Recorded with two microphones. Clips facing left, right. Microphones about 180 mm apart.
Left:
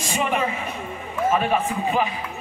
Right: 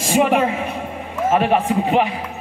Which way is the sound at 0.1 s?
75° right (ahead or behind).